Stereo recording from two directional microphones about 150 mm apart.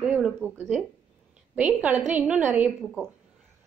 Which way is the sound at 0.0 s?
10° right (ahead or behind).